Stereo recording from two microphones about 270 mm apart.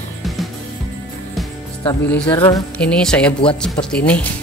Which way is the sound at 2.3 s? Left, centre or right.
Centre.